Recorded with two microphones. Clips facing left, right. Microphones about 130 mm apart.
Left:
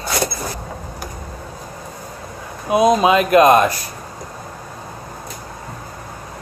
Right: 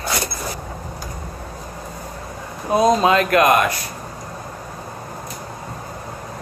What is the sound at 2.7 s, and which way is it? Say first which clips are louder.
Speech: left 2 dB; 15° left (ahead or behind).